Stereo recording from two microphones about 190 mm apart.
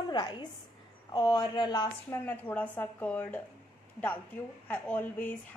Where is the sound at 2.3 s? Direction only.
10° left (ahead or behind).